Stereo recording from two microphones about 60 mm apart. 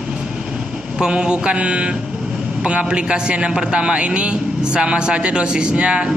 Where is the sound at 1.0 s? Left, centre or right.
Centre.